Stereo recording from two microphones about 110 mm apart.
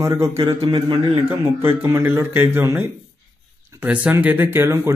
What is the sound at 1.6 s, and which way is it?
Speech, 20° right (ahead or behind).